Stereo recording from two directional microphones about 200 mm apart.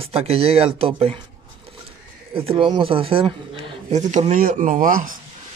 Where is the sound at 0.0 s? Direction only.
30° right (ahead or behind).